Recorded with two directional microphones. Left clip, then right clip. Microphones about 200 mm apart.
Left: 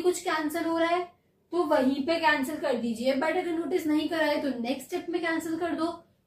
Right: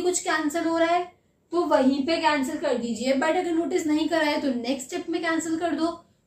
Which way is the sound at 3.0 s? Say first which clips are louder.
Right 4 dB; 25° right (ahead or behind).